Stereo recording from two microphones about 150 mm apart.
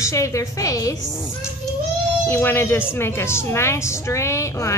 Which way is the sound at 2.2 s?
15° left (ahead or behind).